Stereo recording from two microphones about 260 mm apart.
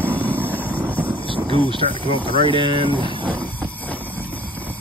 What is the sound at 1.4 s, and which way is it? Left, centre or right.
Speech, centre.